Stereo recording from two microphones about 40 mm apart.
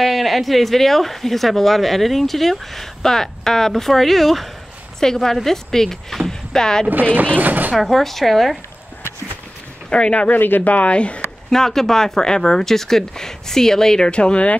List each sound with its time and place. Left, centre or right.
0.0 s speech: centre
6.9 s speech: right
7.7 s speech: centre
9.8 s speech: left
10.3 s speech: left
10.7 s speech: left
11.5 s speech: centre
14.1 s speech: left